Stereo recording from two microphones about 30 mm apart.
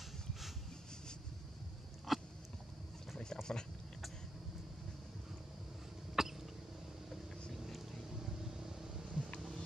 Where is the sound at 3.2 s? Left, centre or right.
Left.